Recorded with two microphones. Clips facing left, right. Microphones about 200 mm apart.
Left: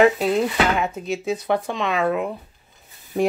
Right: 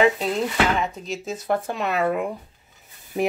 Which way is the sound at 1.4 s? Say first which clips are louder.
Left 2 dB; 5° right (ahead or behind).